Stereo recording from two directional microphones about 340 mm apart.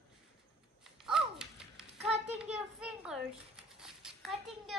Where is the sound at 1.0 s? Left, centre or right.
Centre.